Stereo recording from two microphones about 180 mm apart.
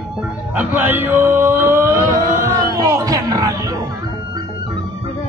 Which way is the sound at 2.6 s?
20° right (ahead or behind).